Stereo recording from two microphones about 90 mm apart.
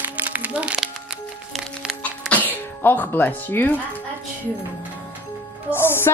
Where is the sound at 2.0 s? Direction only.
15° left (ahead or behind).